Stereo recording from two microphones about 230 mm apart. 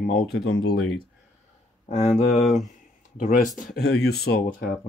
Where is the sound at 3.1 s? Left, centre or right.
Left.